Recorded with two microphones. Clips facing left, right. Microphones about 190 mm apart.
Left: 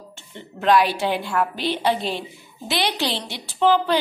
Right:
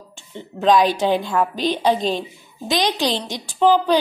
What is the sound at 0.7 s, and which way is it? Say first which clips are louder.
A woman's voice: right 3 dB; 20° right (ahead or behind).